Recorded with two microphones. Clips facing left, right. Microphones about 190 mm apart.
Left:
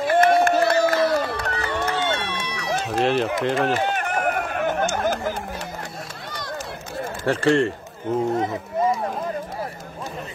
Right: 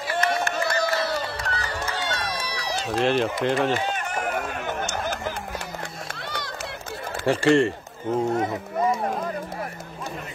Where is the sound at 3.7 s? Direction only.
55° left (ahead or behind).